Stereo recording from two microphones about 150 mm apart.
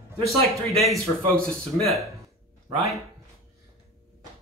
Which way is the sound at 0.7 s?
Centre (ahead or behind).